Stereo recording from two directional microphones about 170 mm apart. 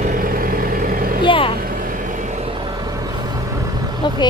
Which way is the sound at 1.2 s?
30° left (ahead or behind).